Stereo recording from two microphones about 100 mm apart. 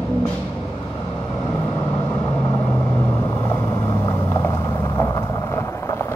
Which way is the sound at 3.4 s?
30° left (ahead or behind).